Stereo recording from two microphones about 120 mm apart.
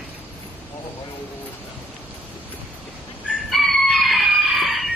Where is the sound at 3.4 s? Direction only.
Centre (ahead or behind).